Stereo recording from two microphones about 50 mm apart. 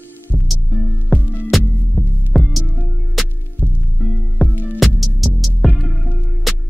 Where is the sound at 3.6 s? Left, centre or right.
Right.